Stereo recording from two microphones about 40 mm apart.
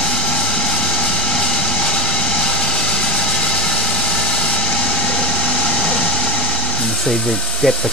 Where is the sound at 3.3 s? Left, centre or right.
Left.